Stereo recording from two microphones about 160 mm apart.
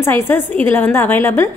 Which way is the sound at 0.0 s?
15° left (ahead or behind).